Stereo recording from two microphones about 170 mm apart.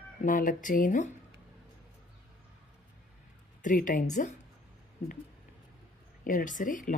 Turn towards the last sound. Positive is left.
turn(degrees=50)  # may be behind; listen again after turning